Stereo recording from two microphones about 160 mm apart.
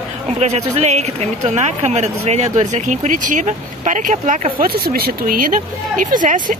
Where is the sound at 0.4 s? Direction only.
45° right (ahead or behind).